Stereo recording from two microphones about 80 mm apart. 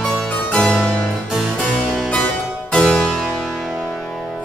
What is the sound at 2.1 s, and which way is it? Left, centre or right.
Harpsichord, centre.